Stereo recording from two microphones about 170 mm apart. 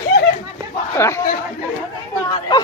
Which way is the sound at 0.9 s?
15° left (ahead or behind).